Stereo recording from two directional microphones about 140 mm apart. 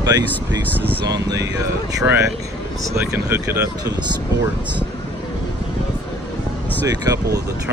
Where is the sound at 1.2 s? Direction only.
25° right (ahead or behind).